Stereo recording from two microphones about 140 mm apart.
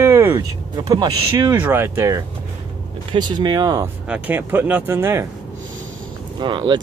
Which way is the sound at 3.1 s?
30° right (ahead or behind).